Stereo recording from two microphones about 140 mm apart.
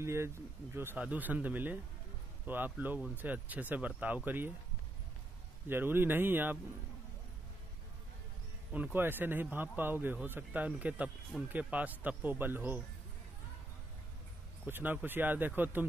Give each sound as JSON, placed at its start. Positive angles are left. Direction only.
{"t": 0.0, "sound": "speech", "side_deg": -20}
{"t": 5.7, "sound": "speech", "side_deg": -15}
{"t": 8.7, "sound": "speech", "side_deg": -15}
{"t": 14.7, "sound": "speech", "side_deg": -15}